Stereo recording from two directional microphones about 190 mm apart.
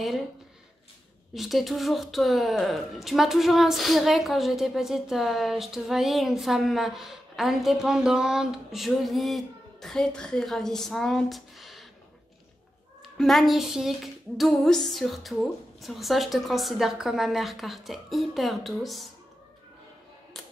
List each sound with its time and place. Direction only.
1.3 s speech: centre (ahead or behind)
13.0 s speech: centre (ahead or behind)